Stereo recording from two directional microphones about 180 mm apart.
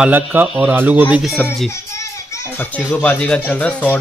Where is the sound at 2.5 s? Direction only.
10° left (ahead or behind).